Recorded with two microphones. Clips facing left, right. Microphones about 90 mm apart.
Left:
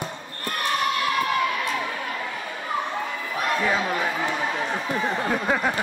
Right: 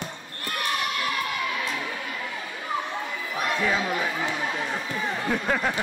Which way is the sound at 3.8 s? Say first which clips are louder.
Left 2 dB; 30° left (ahead or behind).